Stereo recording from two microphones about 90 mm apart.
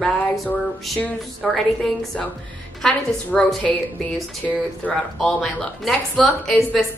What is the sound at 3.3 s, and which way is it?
Speech, centre (ahead or behind).